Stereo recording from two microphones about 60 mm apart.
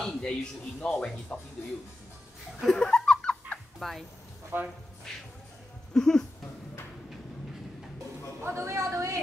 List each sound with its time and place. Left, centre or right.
0.0 s speech: centre
2.6 s laughter: centre
3.8 s speech: centre
4.5 s speech: right
5.9 s speech: centre
8.4 s a sound: right